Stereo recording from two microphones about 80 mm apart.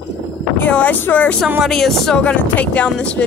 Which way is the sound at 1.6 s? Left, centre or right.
Centre.